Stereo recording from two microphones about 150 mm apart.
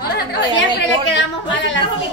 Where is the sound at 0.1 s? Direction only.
90° left.